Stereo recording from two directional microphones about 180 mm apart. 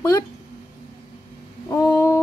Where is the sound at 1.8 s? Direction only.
15° left (ahead or behind).